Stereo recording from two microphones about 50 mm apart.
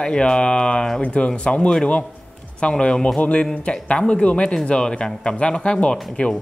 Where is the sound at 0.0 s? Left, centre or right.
Centre.